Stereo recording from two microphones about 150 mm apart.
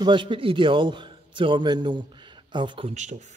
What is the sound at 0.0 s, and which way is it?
A man's voice, 35° right (ahead or behind).